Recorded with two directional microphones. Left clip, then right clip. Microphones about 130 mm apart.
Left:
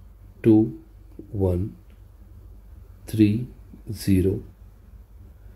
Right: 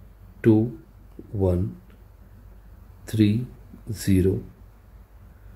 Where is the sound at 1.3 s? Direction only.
25° left (ahead or behind).